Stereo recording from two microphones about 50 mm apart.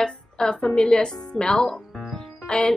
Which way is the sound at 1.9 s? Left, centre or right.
Centre.